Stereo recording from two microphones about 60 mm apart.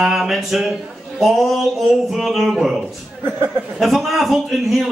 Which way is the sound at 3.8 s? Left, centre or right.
Centre.